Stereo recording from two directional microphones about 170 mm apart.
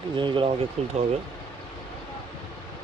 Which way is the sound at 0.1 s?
30° right (ahead or behind).